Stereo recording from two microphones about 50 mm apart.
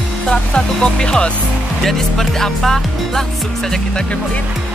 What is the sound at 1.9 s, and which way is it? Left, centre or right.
Music, centre.